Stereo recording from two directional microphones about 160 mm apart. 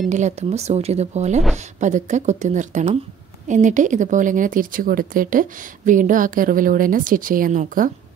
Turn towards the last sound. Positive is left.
turn(degrees=-55)  # may be behind; listen again after turning